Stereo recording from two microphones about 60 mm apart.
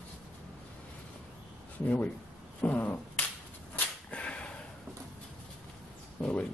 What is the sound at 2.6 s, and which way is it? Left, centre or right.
Beatboxing, left.